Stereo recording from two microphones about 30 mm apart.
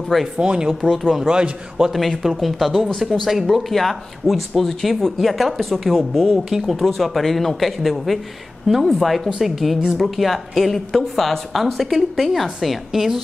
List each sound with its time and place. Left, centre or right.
0.4 s speech: right
1.9 s speech: centre
6.3 s speech: centre
6.8 s speech: centre